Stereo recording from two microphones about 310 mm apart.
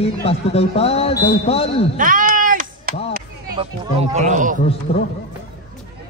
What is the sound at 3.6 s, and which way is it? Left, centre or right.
Speech, centre.